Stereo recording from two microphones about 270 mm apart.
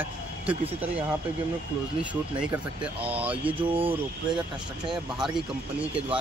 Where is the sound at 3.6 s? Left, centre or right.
Centre.